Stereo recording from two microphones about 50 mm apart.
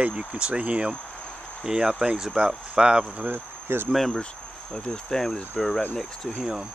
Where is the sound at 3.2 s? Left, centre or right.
Right.